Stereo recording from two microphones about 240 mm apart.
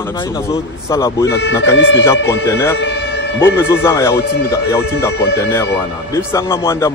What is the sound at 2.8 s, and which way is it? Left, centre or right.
Siren, left.